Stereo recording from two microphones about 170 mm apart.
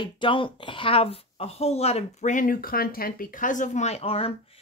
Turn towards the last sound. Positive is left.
turn(degrees=35)  # may be behind; listen again after turning